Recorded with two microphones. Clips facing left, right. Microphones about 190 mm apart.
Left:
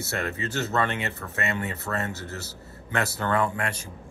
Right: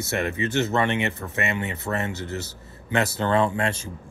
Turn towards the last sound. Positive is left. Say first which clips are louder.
# right 4 dB
turn(degrees=-25)  # may be behind; listen again after turning